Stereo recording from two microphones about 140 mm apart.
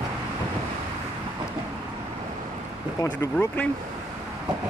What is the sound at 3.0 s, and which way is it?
Speech, 25° left (ahead or behind).